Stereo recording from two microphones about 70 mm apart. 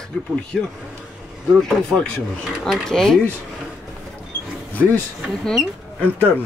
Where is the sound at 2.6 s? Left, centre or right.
Centre.